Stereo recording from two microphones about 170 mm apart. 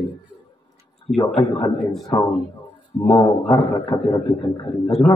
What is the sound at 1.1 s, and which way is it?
Speech, 25° left (ahead or behind).